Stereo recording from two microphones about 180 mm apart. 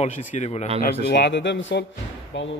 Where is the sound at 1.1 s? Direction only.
70° left (ahead or behind).